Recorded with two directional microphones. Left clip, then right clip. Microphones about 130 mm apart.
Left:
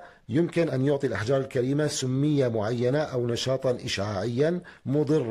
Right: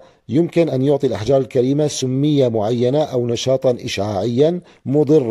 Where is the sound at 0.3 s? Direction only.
25° right (ahead or behind).